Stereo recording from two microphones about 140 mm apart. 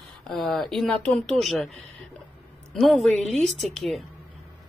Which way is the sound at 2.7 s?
Centre (ahead or behind).